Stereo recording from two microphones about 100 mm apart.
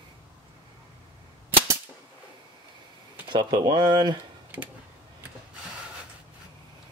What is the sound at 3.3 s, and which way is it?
Speech, 45° right (ahead or behind).